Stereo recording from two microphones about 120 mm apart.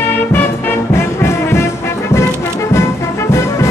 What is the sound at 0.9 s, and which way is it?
Brass instrument, 20° left (ahead or behind).